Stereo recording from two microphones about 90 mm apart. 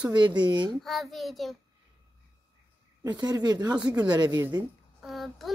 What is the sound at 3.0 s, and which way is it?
Speech, 50° right (ahead or behind).